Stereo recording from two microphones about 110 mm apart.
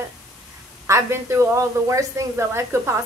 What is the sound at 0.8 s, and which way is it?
A woman's voice, 20° right (ahead or behind).